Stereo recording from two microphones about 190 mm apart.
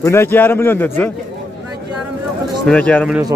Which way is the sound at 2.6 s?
5° left (ahead or behind).